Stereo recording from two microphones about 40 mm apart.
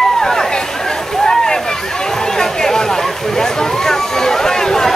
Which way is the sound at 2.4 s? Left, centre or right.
Centre.